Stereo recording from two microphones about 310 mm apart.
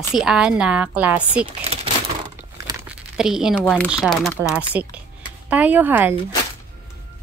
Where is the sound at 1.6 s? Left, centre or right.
Centre.